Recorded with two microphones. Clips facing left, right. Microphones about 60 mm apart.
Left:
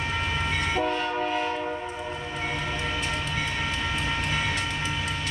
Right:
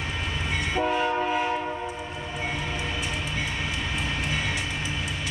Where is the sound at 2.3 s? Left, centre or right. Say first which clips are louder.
Right 1 dB; centre.